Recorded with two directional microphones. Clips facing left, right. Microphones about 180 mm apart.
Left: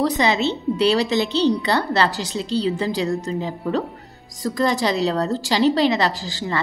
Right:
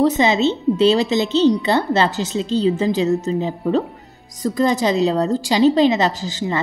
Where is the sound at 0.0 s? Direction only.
20° right (ahead or behind).